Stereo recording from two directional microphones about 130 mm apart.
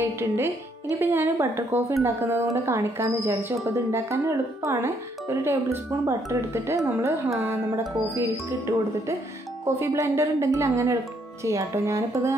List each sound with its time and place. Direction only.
0.0 s speech: 20° right (ahead or behind)